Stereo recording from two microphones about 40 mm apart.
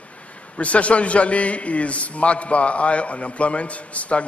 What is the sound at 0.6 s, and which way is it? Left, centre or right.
A man's voice, left.